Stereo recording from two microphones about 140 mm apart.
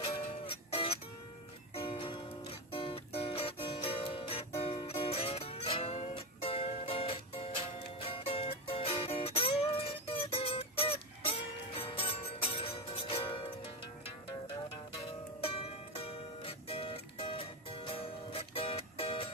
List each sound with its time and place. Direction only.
0.5 s music: 45° left (ahead or behind)
15.4 s music: 45° left (ahead or behind)